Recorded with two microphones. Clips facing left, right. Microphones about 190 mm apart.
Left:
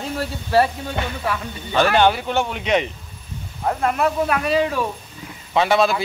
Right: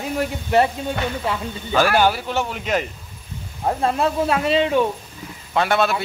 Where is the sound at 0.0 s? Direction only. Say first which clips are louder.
Right 2 dB; 20° right (ahead or behind).